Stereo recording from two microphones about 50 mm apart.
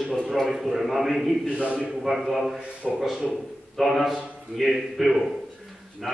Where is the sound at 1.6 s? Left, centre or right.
Right.